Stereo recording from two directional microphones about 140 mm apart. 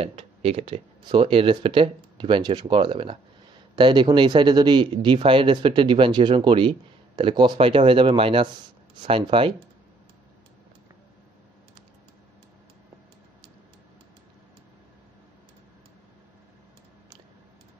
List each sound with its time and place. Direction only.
0.0 s speech: 45° right (ahead or behind)